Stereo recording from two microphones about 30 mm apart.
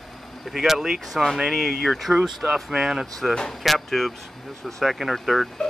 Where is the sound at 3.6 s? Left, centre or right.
Centre.